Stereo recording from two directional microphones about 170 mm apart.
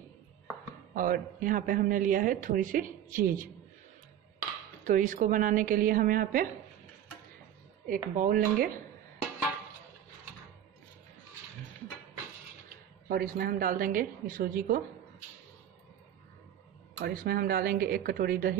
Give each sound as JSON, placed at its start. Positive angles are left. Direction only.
{"t": 0.9, "sound": "a man's voice", "side_deg": -55}
{"t": 4.8, "sound": "a man's voice", "side_deg": -50}
{"t": 7.9, "sound": "a woman's voice", "side_deg": -55}
{"t": 13.1, "sound": "a woman's voice", "side_deg": -60}
{"t": 17.0, "sound": "a woman's voice", "side_deg": -60}